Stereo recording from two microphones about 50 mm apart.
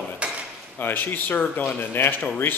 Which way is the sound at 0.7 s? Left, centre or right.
Left.